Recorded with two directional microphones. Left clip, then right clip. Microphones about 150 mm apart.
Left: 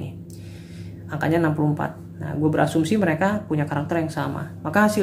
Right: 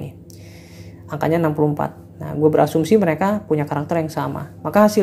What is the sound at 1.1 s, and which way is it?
Speech, 30° right (ahead or behind).